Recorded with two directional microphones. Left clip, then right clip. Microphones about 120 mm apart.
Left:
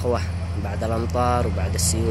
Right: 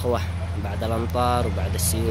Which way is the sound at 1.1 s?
15° right (ahead or behind).